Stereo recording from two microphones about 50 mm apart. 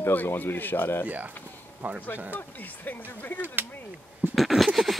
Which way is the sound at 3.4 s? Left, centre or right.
Right.